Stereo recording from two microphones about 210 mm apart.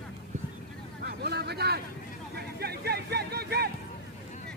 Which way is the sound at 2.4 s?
50° right (ahead or behind).